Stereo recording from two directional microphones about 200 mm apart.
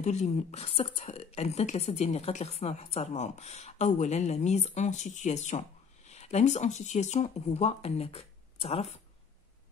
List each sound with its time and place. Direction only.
0.0 s a woman's voice: 35° left (ahead or behind)